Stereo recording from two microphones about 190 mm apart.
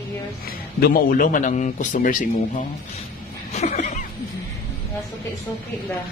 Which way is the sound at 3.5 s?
35° left (ahead or behind).